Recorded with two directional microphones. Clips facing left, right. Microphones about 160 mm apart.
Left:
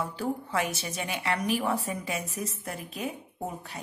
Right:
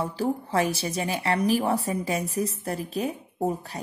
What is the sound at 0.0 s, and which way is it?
A woman's voice, 35° right (ahead or behind).